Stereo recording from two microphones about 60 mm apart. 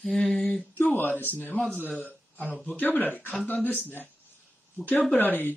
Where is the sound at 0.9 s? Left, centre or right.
Left.